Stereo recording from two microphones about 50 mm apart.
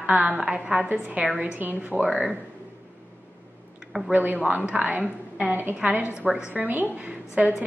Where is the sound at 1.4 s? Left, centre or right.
Right.